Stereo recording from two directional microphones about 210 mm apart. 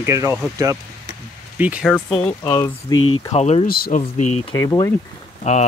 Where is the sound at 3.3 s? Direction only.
30° left (ahead or behind).